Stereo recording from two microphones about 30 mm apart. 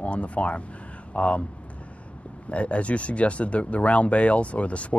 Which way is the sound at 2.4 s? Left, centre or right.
Left.